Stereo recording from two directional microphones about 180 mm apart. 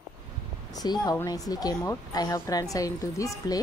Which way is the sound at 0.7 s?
20° left (ahead or behind).